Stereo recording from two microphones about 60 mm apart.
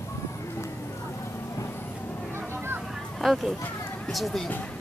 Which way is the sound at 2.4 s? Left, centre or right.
Right.